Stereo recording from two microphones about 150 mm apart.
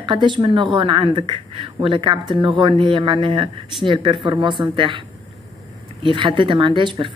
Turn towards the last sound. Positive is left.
turn(degrees=-35)  # may be behind; listen again after turning